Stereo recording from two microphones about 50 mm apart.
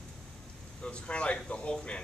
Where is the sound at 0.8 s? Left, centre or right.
Left.